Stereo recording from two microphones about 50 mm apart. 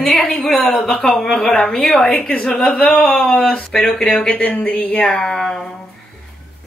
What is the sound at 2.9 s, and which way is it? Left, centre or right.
Speech, left.